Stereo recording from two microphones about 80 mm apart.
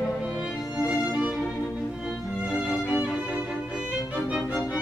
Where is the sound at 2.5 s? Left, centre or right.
Centre.